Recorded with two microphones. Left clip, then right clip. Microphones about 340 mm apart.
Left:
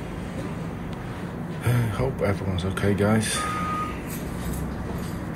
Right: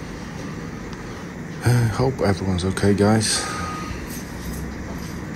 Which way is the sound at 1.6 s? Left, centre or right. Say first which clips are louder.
Right 5 dB; centre.